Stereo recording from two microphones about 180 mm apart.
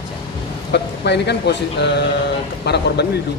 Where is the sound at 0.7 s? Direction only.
70° left (ahead or behind).